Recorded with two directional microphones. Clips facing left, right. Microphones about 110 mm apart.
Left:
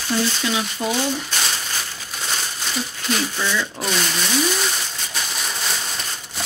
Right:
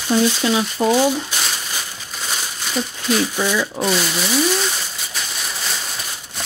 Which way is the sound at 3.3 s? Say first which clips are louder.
Right 4 dB; 15° right (ahead or behind).